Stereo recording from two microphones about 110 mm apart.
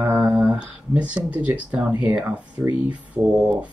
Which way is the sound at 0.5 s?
10° right (ahead or behind).